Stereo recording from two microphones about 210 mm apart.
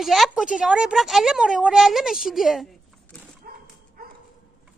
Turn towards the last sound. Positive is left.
turn(degrees=-45)  # may be behind; listen again after turning